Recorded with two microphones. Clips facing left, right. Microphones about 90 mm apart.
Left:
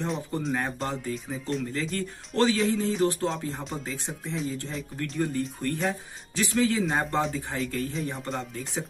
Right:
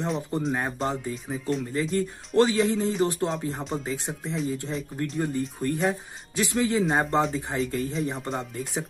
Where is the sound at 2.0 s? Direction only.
15° right (ahead or behind).